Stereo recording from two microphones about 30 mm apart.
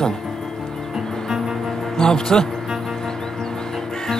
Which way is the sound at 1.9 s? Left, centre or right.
Left.